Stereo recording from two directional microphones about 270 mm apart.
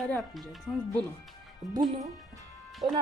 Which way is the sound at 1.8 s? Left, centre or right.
Centre.